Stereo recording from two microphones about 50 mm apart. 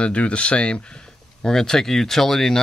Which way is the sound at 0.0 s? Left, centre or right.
Left.